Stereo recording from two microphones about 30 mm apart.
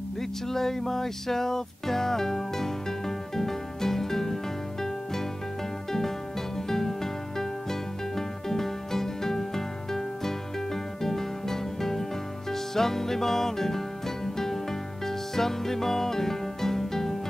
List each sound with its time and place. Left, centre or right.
0.2 s music: centre
5.9 s music: centre